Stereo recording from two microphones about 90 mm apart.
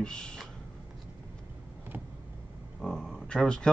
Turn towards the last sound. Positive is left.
turn(degrees=10)  # may be behind; listen again after turning